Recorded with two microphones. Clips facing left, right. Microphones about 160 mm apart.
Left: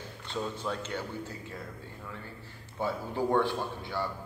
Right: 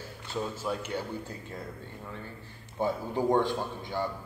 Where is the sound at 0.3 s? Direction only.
5° right (ahead or behind).